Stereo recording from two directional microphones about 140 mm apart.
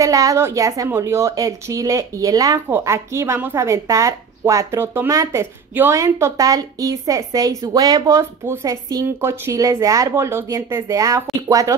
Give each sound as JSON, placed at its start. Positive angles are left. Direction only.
{"t": 0.0, "sound": "a woman's voice", "side_deg": -25}